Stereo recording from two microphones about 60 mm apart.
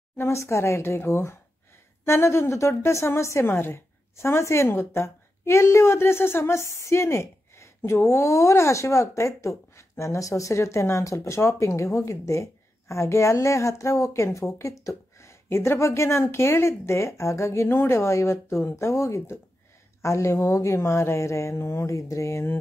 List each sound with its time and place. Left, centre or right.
0.2 s a woman's voice: left